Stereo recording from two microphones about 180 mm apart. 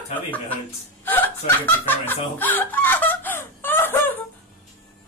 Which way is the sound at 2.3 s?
10° left (ahead or behind).